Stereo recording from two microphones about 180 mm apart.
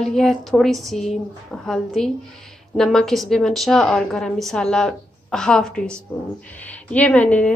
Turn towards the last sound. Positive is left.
turn(degrees=5)  # may be behind; listen again after turning